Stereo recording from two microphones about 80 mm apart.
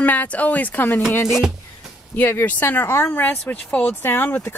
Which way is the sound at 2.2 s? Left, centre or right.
Left.